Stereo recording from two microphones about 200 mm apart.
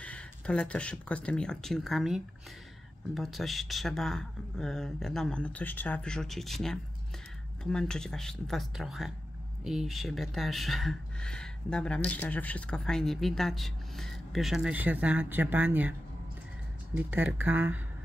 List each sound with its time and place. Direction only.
0.0 s speech: 5° left (ahead or behind)
16.9 s speech: 10° right (ahead or behind)